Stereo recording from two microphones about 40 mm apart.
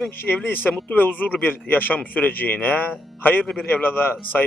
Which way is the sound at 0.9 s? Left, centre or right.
Left.